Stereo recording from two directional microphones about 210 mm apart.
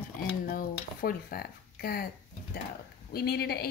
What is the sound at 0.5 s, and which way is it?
Speech, 45° left (ahead or behind).